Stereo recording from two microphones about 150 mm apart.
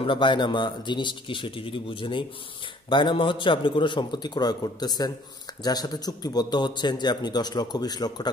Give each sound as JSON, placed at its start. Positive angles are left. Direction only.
{"t": 0.0, "sound": "a man's voice", "side_deg": 35}